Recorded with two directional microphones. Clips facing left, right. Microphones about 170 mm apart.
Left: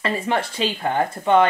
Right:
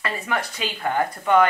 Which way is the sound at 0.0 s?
25° left (ahead or behind).